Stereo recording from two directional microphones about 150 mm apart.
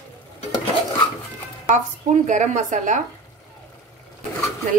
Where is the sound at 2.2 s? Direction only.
55° right (ahead or behind).